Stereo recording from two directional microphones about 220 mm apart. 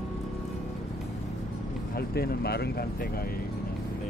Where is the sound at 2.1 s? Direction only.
45° left (ahead or behind).